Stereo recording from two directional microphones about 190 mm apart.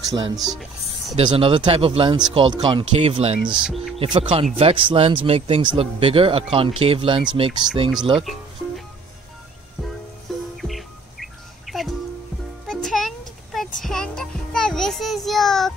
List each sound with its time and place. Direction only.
0.0 s speech: 20° right (ahead or behind)
3.6 s speech: centre (ahead or behind)
4.0 s speech: 25° right (ahead or behind)
8.2 s music: centre (ahead or behind)
10.3 s music: centre (ahead or behind)